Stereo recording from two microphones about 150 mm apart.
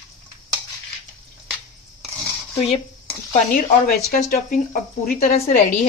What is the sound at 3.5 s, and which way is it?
A woman's voice, 65° left (ahead or behind).